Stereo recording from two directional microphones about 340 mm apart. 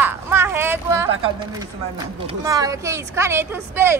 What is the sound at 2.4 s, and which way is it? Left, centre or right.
Speech, centre.